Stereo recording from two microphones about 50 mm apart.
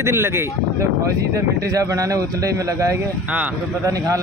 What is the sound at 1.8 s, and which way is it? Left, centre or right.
Speech, right.